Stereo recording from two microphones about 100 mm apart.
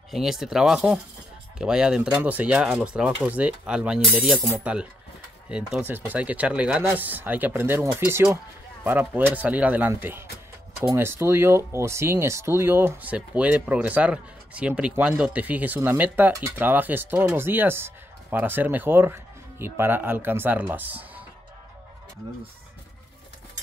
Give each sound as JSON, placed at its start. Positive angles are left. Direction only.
{"t": 0.1, "sound": "speech", "side_deg": -5}
{"t": 5.7, "sound": "speech", "side_deg": -20}